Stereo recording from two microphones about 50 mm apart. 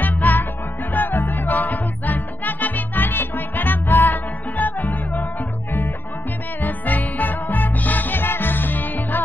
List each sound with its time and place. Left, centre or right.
0.0 s music: left
6.6 s music: left